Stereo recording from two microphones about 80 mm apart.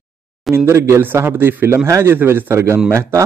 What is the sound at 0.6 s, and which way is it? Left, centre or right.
A man's voice, right.